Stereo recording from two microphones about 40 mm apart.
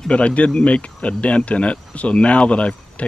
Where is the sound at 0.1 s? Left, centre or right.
Left.